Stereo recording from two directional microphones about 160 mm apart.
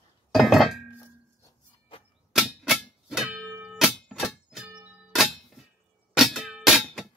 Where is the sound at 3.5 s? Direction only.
5° right (ahead or behind).